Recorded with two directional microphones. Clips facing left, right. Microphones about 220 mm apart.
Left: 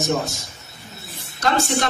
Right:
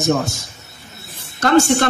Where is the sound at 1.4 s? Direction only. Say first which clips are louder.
Right 7 dB; 50° right (ahead or behind).